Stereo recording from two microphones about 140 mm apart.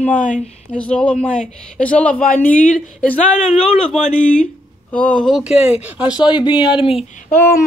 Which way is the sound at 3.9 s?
60° left (ahead or behind).